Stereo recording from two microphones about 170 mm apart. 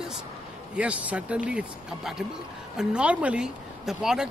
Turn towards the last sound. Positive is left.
turn(degrees=-5)  # may be behind; listen again after turning